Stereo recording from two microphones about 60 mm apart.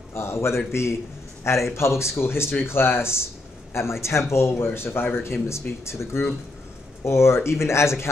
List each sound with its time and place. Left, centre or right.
0.1 s speech: left